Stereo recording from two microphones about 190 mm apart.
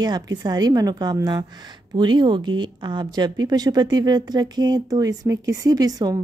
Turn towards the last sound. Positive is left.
turn(degrees=-20)  # may be behind; listen again after turning